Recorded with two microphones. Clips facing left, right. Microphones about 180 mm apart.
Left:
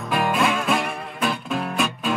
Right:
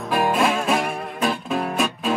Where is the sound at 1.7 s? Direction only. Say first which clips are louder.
Right 1 dB; 40° right (ahead or behind).